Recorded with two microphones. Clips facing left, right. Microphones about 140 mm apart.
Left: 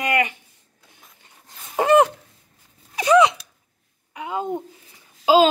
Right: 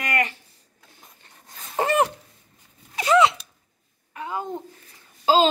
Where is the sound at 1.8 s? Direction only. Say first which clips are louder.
Left 6 dB; 15° left (ahead or behind).